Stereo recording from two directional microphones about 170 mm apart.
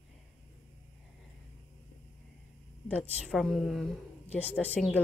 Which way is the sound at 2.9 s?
5° left (ahead or behind).